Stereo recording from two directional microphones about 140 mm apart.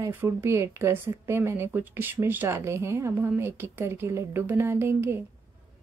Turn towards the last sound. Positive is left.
turn(degrees=-15)  # may be behind; listen again after turning